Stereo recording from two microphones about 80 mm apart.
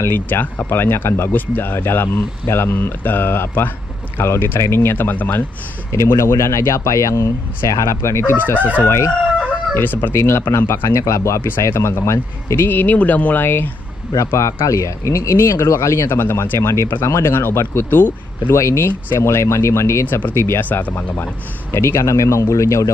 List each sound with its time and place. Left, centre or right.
0.0 s speech: left
6.1 s speech: left
8.8 s speech: left
9.8 s speech: left
10.1 s speech: left
12.6 s speech: left
14.1 s speech: left
18.5 s speech: left
20.6 s speech: left
21.7 s speech: left